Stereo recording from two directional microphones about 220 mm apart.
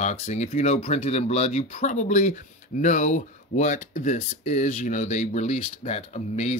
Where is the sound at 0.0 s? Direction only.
30° left (ahead or behind).